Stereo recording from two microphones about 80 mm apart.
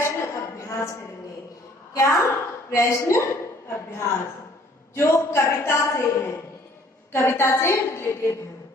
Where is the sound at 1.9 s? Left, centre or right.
Left.